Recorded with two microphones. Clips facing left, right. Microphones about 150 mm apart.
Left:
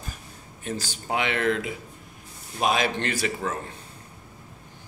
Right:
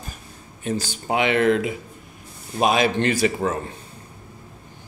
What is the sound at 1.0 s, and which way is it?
A man's voice, 10° right (ahead or behind).